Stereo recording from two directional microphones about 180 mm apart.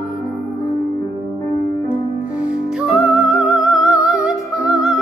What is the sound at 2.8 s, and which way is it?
Music, centre (ahead or behind).